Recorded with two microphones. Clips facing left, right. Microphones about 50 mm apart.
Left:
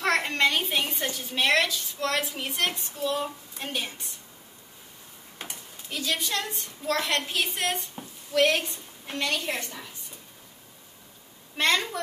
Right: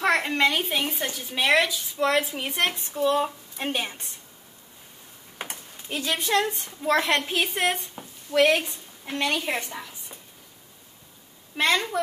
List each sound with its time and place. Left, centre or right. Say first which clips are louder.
0.0 s a woman's voice: right 2 dB; centre
2.4 s a woman's voice: right 3 dB; right
5.4 s a woman's voice: right 4 dB; right
11.5 s a woman's voice: right 2 dB; centre